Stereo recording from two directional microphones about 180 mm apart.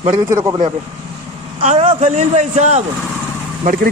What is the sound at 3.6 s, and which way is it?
Speech, 50° right (ahead or behind).